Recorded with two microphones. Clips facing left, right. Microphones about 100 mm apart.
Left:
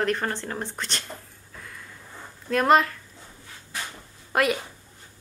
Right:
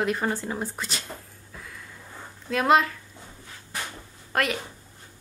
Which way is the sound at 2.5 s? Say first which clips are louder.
Left 1 dB; centre (ahead or behind).